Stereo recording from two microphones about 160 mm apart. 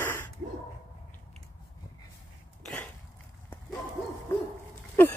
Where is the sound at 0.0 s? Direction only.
15° left (ahead or behind).